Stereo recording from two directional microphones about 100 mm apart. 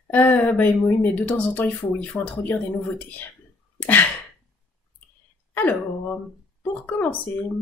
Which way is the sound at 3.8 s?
15° left (ahead or behind).